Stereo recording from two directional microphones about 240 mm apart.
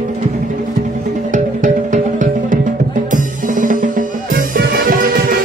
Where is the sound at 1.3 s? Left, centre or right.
Right.